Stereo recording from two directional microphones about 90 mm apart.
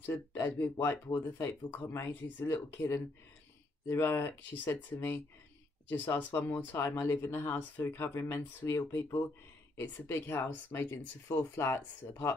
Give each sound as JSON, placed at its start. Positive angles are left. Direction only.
{"t": 0.0, "sound": "speech", "side_deg": 20}